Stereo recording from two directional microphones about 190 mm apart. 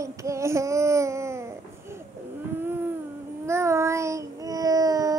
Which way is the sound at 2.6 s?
10° right (ahead or behind).